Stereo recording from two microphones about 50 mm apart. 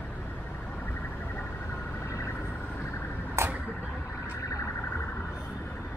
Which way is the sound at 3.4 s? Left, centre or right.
Right.